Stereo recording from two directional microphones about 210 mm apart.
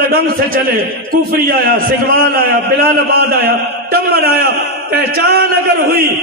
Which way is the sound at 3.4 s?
45° right (ahead or behind).